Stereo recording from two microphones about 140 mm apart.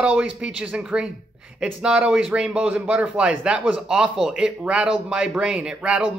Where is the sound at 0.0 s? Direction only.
5° right (ahead or behind).